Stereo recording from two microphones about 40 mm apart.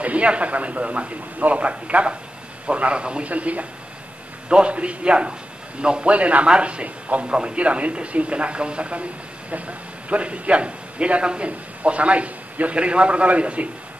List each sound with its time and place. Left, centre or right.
0.0 s a man's voice: right
4.5 s a man's voice: right